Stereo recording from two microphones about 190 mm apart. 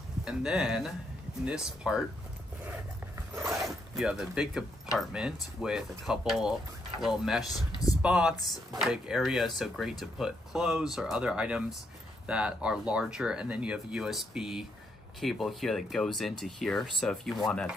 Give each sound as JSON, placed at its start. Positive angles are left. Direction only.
{"t": 0.2, "sound": "speech", "side_deg": -5}
{"t": 3.2, "sound": "a sound", "side_deg": -15}
{"t": 3.6, "sound": "speech", "side_deg": 0}
{"t": 7.4, "sound": "speech", "side_deg": 20}
{"t": 8.0, "sound": "speech", "side_deg": -5}